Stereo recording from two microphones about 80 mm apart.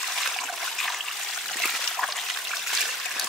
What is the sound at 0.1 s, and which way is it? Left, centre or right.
Stream, centre.